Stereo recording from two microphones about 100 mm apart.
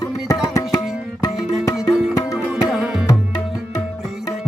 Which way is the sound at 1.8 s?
35° left (ahead or behind).